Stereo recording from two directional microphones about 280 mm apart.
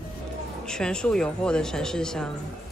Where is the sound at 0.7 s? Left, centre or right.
Centre.